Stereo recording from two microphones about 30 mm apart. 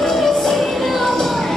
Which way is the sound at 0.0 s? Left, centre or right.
Centre.